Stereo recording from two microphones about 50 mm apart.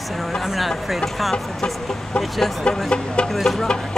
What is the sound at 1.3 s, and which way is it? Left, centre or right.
Speech, centre.